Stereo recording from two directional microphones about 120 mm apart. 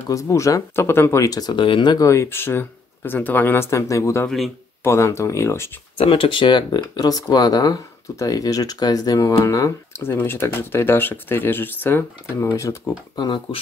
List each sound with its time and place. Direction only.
0.1 s speech: 25° left (ahead or behind)
2.0 s speech: 20° left (ahead or behind)
5.9 s speech: 50° left (ahead or behind); by 12.7 s 25° left (ahead or behind)
13.1 s speech: 35° left (ahead or behind)